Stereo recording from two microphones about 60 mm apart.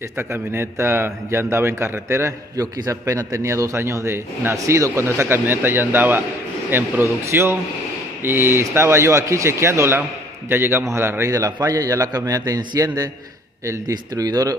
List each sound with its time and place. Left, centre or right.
0.2 s a man's voice: right
2.6 s a man's voice: right
11.3 s a man's voice: right
13.7 s a man's voice: right